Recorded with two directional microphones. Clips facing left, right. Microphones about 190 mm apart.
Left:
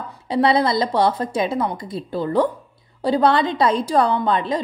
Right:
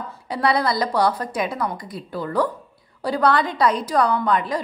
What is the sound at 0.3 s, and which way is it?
A woman's voice, 25° left (ahead or behind).